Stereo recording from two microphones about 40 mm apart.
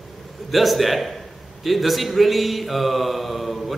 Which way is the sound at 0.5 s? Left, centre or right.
Centre.